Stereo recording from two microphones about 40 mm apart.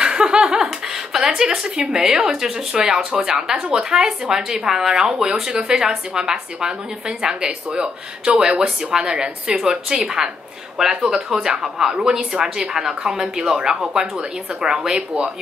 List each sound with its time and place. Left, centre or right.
0.0 s laughter: right
0.7 s a sound: centre
1.8 s a woman's voice: centre
2.7 s a woman's voice: right